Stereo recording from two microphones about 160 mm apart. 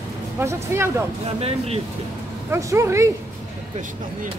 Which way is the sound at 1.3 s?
40° right (ahead or behind).